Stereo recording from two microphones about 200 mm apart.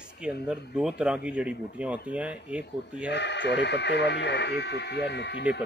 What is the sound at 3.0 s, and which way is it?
Speech, 60° left (ahead or behind).